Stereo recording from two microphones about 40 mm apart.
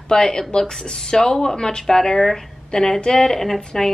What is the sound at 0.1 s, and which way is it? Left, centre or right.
A woman's voice, centre.